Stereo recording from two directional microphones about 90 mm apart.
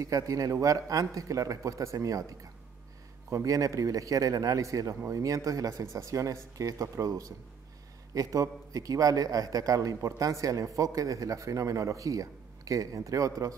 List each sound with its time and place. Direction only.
0.0 s a man's voice: 40° right (ahead or behind)